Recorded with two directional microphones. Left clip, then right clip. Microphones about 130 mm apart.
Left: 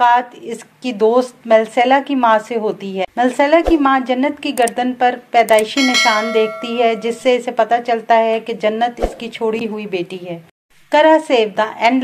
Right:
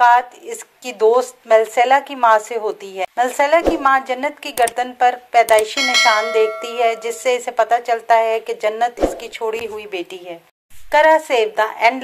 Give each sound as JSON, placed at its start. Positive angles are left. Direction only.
{"t": 0.0, "sound": "speech", "side_deg": -35}
{"t": 5.8, "sound": "speech", "side_deg": 0}
{"t": 6.6, "sound": "speech", "side_deg": -35}